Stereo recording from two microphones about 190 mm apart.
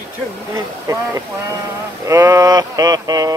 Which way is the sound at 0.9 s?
15° right (ahead or behind).